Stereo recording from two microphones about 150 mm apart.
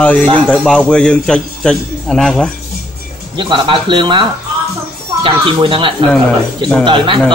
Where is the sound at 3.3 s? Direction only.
35° right (ahead or behind).